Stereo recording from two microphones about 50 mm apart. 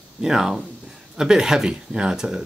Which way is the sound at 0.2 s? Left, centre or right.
Centre.